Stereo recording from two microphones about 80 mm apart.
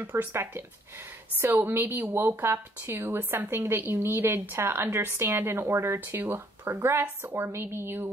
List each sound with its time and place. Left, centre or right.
0.1 s a woman's voice: right